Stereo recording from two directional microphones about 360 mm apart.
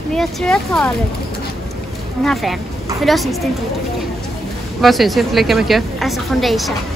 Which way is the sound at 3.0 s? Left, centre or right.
Centre.